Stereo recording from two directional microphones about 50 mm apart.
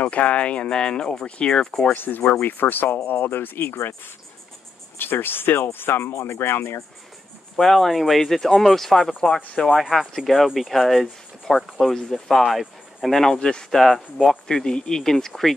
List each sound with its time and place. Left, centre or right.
0.0 s speech: left
2.0 s speech: left
4.9 s speech: left
7.5 s speech: centre
14.5 s speech: centre